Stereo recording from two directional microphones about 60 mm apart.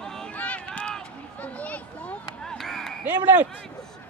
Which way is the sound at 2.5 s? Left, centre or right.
Centre.